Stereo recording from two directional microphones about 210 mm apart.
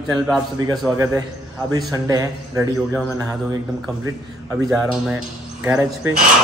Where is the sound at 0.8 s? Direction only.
15° right (ahead or behind).